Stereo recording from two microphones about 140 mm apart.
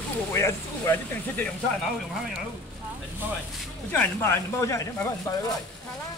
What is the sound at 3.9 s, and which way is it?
Speech, 15° left (ahead or behind).